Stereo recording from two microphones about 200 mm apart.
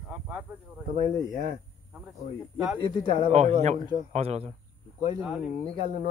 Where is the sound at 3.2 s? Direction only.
35° right (ahead or behind).